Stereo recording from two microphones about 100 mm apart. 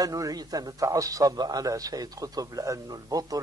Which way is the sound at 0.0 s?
35° right (ahead or behind).